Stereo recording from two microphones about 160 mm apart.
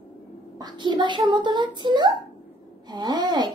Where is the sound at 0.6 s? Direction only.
25° right (ahead or behind).